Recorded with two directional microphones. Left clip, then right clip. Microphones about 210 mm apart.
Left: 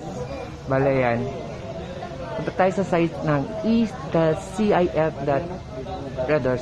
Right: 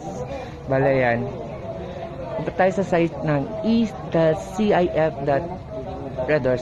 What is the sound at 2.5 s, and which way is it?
A woman's voice, 5° right (ahead or behind).